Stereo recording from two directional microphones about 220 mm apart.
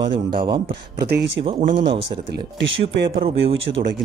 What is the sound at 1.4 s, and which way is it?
Speech, 40° right (ahead or behind).